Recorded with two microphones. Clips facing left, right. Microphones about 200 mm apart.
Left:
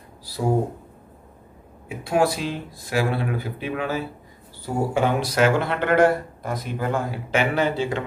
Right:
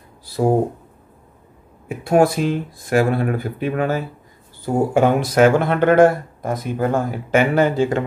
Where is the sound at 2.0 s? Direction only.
50° right (ahead or behind).